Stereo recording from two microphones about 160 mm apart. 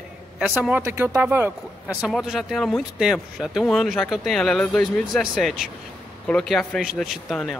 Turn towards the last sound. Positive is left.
turn(degrees=5)  # may be behind; listen again after turning